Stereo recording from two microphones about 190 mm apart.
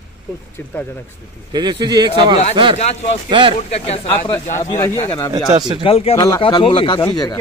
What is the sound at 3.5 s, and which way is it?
Speech, 35° left (ahead or behind).